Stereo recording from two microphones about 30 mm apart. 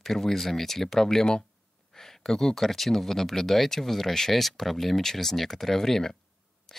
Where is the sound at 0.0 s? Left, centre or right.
Centre.